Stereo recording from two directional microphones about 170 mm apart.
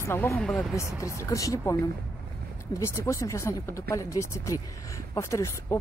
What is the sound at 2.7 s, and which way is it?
Speech, 15° left (ahead or behind).